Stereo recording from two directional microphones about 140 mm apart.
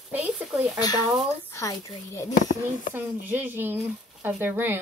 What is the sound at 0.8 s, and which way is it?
A woman's voice, 30° left (ahead or behind).